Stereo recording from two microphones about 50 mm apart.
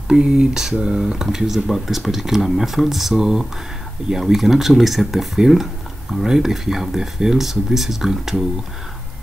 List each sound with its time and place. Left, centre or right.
0.1 s speech: centre